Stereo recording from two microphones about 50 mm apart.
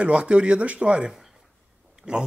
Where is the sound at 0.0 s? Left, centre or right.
Right.